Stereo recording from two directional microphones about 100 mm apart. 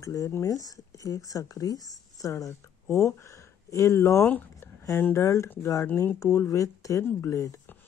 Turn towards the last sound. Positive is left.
turn(degrees=30)  # may be behind; listen again after turning